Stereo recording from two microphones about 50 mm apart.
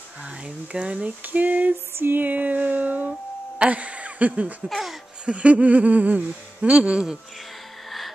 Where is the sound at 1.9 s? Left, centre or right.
Right.